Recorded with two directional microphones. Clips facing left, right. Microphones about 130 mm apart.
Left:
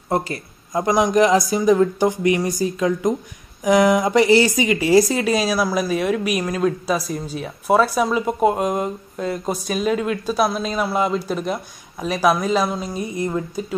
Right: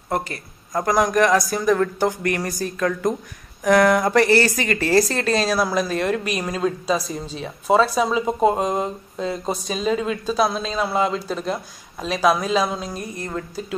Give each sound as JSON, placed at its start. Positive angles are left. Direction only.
{"t": 0.7, "sound": "speech", "side_deg": 20}